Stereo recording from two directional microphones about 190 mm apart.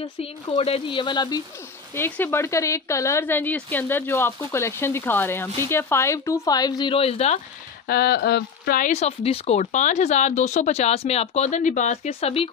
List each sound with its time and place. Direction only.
0.2 s speech: 30° left (ahead or behind)
2.0 s a woman's voice: 10° left (ahead or behind); by 7.3 s 35° left (ahead or behind)
7.9 s speech: 55° left (ahead or behind); by 12.4 s 30° left (ahead or behind)